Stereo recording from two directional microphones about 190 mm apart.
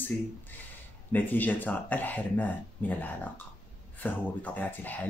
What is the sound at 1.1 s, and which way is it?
Speech, 10° left (ahead or behind).